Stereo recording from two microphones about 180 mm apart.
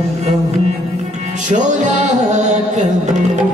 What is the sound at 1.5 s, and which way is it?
Music, 45° right (ahead or behind).